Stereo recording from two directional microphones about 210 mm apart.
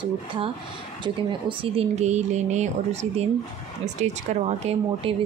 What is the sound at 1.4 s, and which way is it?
Speech, 25° right (ahead or behind).